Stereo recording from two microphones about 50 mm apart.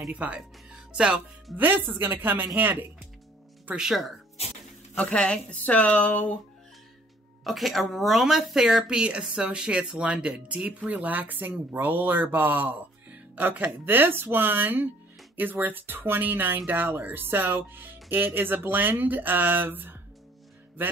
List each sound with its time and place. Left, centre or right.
0.1 s speech: right
0.7 s music: centre
1.6 s speech: right
3.7 s speech: centre
4.9 s speech: left
7.4 s speech: centre; by 20.9 s right